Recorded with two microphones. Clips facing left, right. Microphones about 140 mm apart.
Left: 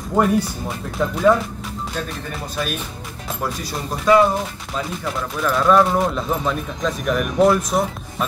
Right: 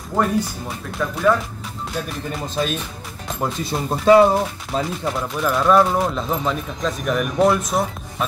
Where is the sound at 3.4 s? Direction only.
25° right (ahead or behind).